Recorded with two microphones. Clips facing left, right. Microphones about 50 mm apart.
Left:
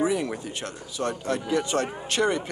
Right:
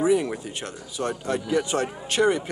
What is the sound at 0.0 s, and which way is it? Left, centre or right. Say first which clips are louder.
Speech: right 3 dB; centre.